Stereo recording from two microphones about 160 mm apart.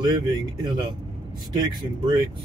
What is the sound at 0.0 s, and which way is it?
Speech, 25° right (ahead or behind).